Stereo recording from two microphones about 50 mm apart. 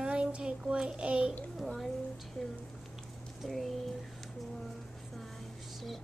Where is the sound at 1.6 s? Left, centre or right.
Centre.